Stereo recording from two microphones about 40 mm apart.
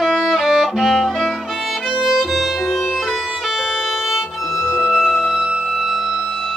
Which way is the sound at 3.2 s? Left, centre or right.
Centre.